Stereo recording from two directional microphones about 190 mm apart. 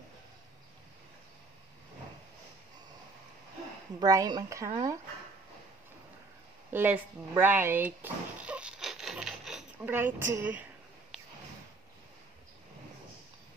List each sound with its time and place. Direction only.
4.0 s a woman's voice: 20° right (ahead or behind)
6.7 s dog: 10° right (ahead or behind)
10.3 s speech: 10° right (ahead or behind)